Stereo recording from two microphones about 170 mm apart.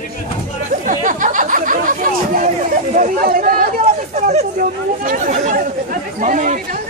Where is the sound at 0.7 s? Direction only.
50° right (ahead or behind).